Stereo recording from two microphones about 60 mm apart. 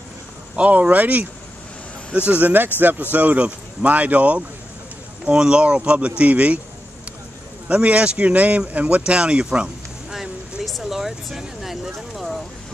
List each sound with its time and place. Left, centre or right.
0.6 s speech: right
7.6 s speech: right
10.1 s a sound: centre